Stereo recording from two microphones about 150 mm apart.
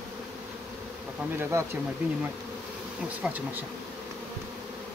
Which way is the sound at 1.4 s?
15° right (ahead or behind).